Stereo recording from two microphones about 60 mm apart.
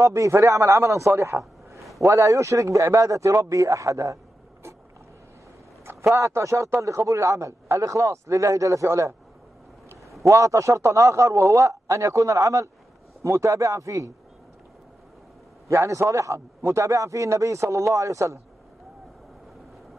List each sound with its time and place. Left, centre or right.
0.0 s a man's voice: right
5.9 s a man's voice: right
10.2 s a man's voice: right
13.2 s a man's voice: right
15.7 s a man's voice: right